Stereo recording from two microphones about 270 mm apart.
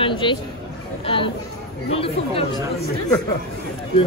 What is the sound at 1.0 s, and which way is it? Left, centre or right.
Speech, centre.